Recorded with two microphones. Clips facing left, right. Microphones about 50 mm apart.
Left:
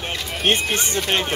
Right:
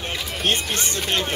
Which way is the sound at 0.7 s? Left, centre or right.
Left.